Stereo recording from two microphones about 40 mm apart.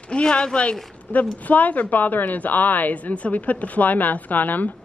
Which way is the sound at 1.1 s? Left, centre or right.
Left.